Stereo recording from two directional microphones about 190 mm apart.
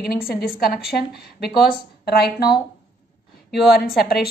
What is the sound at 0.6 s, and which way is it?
A woman's voice, 55° left (ahead or behind).